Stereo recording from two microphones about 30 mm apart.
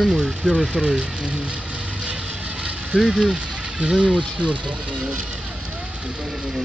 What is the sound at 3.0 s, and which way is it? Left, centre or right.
Speech, centre.